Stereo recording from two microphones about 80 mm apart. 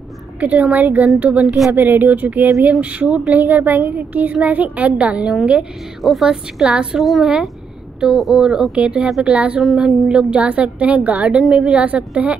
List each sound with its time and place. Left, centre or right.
0.4 s a woman's voice: centre
11.8 s a woman's voice: centre